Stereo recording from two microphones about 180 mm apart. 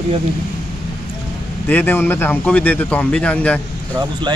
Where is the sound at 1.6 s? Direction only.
10° left (ahead or behind).